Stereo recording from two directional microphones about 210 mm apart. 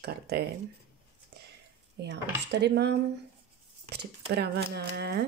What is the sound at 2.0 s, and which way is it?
Speech, 55° right (ahead or behind).